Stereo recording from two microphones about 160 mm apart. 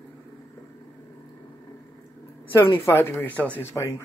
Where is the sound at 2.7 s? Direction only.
15° left (ahead or behind).